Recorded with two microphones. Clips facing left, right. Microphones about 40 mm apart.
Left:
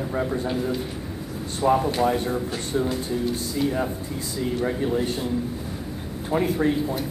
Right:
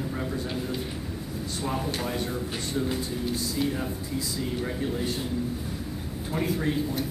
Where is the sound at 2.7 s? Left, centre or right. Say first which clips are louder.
Left 5 dB; left.